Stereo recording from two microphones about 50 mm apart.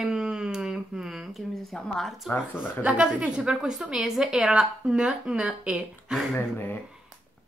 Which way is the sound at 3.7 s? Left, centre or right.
Centre.